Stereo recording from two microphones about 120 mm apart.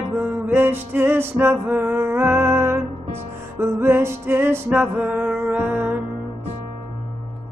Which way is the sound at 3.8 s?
20° right (ahead or behind).